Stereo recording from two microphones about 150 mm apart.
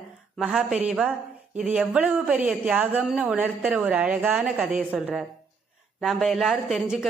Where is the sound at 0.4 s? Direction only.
5° right (ahead or behind).